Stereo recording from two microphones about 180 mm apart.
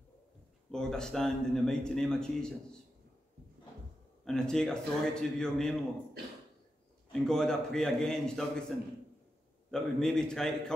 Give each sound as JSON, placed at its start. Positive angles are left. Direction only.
{"t": 0.7, "sound": "speech", "side_deg": 5}
{"t": 4.2, "sound": "speech", "side_deg": 5}
{"t": 6.2, "sound": "beatboxing", "side_deg": -65}
{"t": 7.1, "sound": "speech", "side_deg": 5}